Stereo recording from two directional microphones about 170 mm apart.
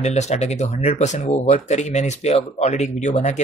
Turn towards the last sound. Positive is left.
turn(degrees=45)  # may be behind; listen again after turning